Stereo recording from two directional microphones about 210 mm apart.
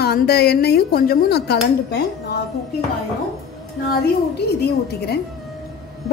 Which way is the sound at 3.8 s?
50° left (ahead or behind).